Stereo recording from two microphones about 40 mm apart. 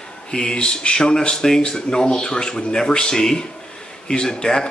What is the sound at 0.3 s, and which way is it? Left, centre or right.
A man's voice, centre.